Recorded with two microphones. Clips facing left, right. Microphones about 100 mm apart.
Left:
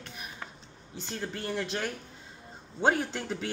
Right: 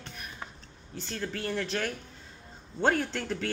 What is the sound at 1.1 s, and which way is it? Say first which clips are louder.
Speech: right 1 dB; 15° left (ahead or behind).